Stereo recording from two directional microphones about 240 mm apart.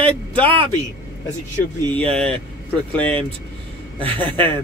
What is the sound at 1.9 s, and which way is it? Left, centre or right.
Speech, centre.